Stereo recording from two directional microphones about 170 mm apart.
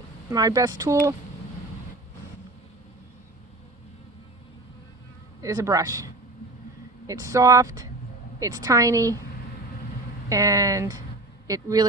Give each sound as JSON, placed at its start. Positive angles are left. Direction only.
{"t": 0.3, "sound": "speech", "side_deg": -20}
{"t": 5.4, "sound": "speech", "side_deg": -20}
{"t": 10.3, "sound": "speech", "side_deg": -20}